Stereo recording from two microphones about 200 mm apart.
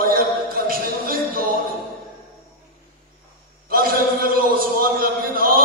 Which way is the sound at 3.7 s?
45° right (ahead or behind).